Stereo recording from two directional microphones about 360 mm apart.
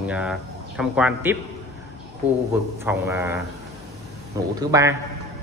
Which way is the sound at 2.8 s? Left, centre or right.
Centre.